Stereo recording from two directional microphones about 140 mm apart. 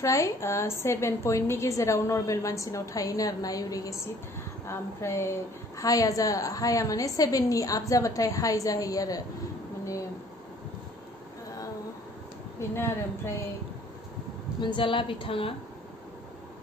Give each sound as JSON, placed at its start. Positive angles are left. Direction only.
{"t": 0.0, "sound": "a woman's voice", "side_deg": 20}
{"t": 12.5, "sound": "a woman's voice", "side_deg": 15}
{"t": 14.6, "sound": "speech", "side_deg": 35}